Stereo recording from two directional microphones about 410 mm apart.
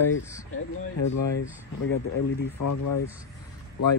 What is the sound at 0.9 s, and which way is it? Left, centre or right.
Speech, left.